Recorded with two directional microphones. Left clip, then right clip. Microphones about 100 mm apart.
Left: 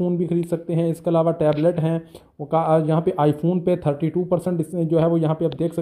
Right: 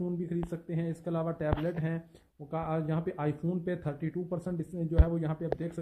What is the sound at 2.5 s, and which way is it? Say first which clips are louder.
Speech: left 16 dB; 30° left (ahead or behind).